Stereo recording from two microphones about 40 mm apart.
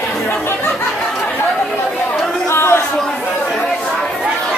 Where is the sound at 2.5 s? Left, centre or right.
Left.